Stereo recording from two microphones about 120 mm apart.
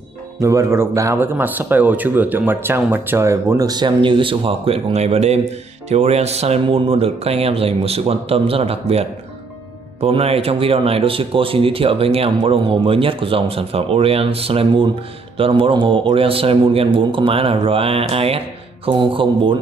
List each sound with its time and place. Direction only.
0.4 s speech: 25° right (ahead or behind); by 19.5 s 45° right (ahead or behind)